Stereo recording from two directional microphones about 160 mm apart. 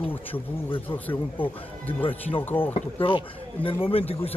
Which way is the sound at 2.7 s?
35° left (ahead or behind).